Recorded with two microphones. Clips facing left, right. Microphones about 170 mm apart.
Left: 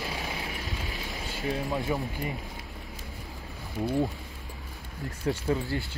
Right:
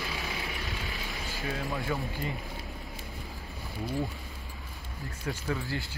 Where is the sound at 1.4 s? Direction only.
20° left (ahead or behind).